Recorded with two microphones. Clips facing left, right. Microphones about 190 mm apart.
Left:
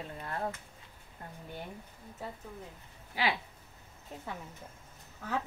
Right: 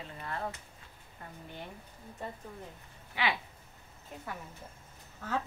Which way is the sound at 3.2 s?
35° left (ahead or behind).